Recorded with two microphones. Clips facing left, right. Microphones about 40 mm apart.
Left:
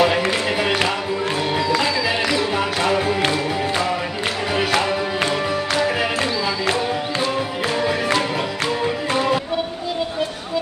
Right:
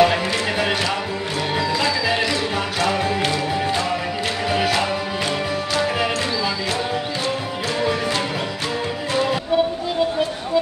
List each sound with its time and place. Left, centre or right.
0.0 s music: centre
1.8 s music: centre
3.2 s music: left